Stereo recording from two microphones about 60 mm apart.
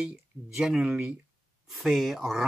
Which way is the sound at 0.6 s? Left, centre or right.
Centre.